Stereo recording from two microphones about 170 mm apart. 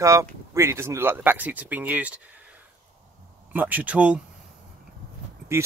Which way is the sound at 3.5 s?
10° right (ahead or behind).